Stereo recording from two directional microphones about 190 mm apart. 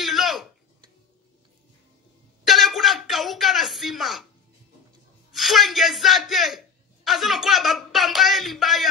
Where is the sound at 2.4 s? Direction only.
Centre (ahead or behind).